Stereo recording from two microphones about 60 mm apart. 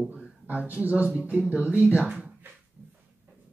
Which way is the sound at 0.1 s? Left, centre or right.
Right.